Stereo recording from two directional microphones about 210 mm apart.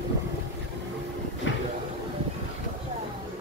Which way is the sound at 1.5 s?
65° left (ahead or behind).